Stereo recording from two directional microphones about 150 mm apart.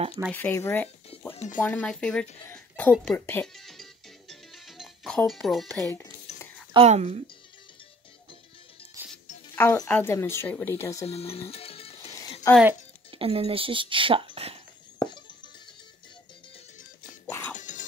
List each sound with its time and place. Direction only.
0.3 s speech: 15° left (ahead or behind)
1.3 s music: 50° left (ahead or behind)
1.6 s speech: 5° left (ahead or behind)
2.4 s music: 15° left (ahead or behind)
6.3 s a sound: 15° left (ahead or behind)
6.7 s a woman's voice: 45° right (ahead or behind)
9.0 s music: 15° right (ahead or behind)
9.6 s speech: 15° left (ahead or behind)
11.1 s music: 40° left (ahead or behind)
12.5 s speech: 20° left (ahead or behind)
13.1 s speech: 40° right (ahead or behind)
15.0 s music: 30° left (ahead or behind)
17.3 s music: 10° left (ahead or behind)
17.6 s music: 55° left (ahead or behind)